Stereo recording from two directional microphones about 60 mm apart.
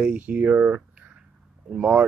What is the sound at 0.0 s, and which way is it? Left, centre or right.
Speech, right.